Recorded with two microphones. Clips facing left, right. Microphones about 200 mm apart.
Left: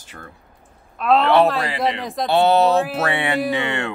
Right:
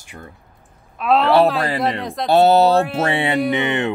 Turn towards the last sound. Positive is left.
turn(degrees=-20)  # may be behind; listen again after turning